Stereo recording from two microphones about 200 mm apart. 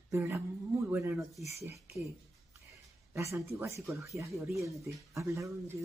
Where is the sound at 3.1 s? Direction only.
15° right (ahead or behind).